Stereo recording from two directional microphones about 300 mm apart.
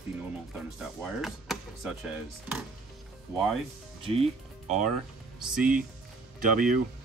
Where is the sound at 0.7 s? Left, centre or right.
Centre.